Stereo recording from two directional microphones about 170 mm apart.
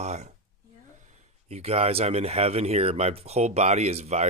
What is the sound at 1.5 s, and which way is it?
Speech, 35° right (ahead or behind).